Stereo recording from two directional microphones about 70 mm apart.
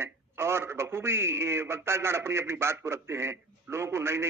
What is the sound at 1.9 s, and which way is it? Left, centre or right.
A man's voice, right.